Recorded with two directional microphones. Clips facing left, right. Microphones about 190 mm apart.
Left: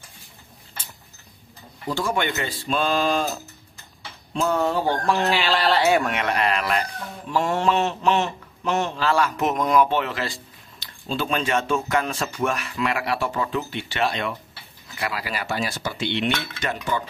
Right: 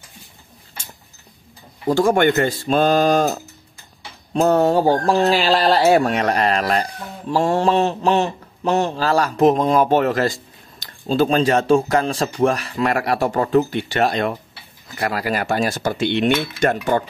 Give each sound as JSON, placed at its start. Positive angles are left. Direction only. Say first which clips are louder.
{"t": 1.9, "sound": "a man's voice", "louder": "right 9 dB", "side_deg": -45}
{"t": 9.8, "sound": "a man's voice", "louder": "right 8 dB", "side_deg": -45}